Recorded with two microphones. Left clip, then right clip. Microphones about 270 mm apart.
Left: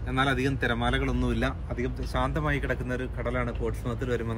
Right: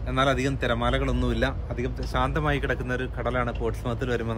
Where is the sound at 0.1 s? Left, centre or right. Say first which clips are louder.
Right 3 dB; centre.